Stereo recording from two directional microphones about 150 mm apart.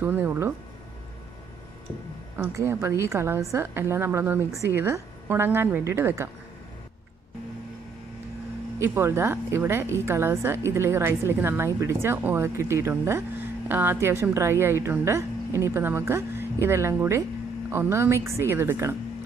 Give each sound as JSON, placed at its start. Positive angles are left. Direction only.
{"t": 0.0, "sound": "a woman's voice", "side_deg": -15}
{"t": 2.3, "sound": "a woman's voice", "side_deg": -15}
{"t": 8.7, "sound": "a woman's voice", "side_deg": -15}